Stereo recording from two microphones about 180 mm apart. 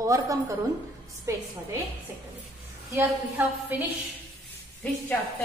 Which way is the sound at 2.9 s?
15° right (ahead or behind).